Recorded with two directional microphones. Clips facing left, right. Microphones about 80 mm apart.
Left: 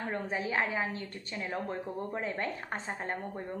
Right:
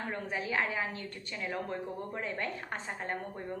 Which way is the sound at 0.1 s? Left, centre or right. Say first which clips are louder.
Left 2 dB; left.